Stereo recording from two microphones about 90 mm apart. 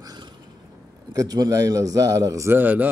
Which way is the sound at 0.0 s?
50° right (ahead or behind).